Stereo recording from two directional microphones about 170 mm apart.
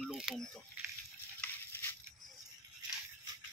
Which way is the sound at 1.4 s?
10° left (ahead or behind).